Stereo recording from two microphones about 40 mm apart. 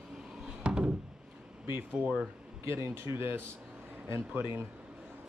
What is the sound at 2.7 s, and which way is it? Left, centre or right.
Speech, right.